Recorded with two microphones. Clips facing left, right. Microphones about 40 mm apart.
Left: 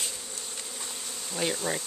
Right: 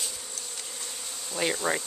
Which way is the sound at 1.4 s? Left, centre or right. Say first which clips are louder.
Right 2 dB; centre.